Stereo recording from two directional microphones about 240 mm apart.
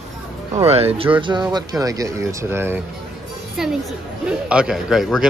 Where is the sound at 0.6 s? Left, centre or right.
Right.